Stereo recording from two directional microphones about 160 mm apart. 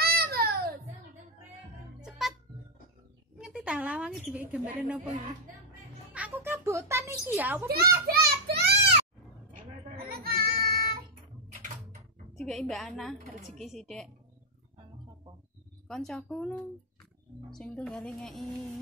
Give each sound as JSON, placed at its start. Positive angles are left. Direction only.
{"t": 0.0, "sound": "a sound", "side_deg": -75}
{"t": 2.0, "sound": "music", "side_deg": 0}
{"t": 3.3, "sound": "speech", "side_deg": -5}
{"t": 6.1, "sound": "a sound", "side_deg": -10}
{"t": 7.3, "sound": "a woman's voice", "side_deg": -5}
{"t": 7.7, "sound": "children playing", "side_deg": -75}
{"t": 9.9, "sound": "music", "side_deg": -70}
{"t": 12.4, "sound": "a woman's voice", "side_deg": 0}
{"t": 15.9, "sound": "a woman's voice", "side_deg": 5}